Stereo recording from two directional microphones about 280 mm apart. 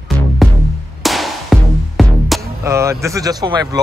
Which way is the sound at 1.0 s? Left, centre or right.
Centre.